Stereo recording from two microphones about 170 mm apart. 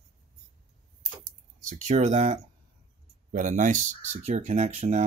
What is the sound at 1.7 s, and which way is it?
Speech, 45° right (ahead or behind).